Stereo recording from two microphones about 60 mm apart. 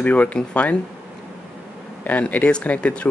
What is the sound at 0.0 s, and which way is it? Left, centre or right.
Speech, left.